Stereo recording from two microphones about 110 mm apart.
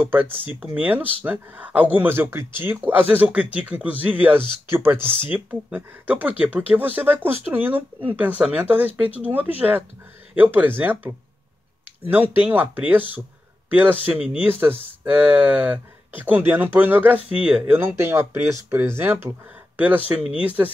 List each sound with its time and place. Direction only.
0.0 s a man's voice: 20° right (ahead or behind)
17.7 s speech: 20° right (ahead or behind)
20.4 s speech: 15° right (ahead or behind)